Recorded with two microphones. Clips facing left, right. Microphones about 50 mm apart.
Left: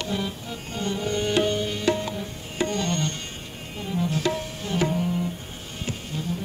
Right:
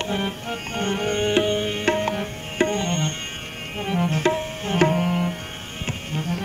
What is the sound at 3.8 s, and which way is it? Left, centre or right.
Tabla, right.